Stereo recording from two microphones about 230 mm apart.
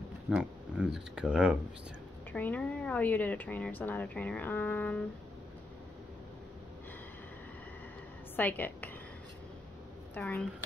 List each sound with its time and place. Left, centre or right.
0.3 s speech: centre
2.3 s speech: centre
8.4 s a woman's voice: centre
10.1 s speech: centre